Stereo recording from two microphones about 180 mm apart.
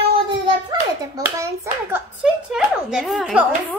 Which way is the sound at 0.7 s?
20° right (ahead or behind).